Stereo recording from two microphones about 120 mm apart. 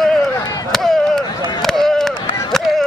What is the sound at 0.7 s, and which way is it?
Chop, 5° left (ahead or behind).